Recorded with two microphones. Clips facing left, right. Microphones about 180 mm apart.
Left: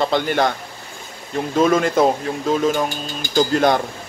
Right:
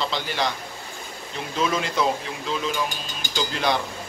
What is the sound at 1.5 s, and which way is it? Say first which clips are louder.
Speech: left 9 dB; 50° left (ahead or behind).